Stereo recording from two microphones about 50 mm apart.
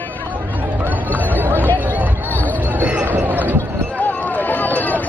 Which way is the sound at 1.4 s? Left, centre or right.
Right.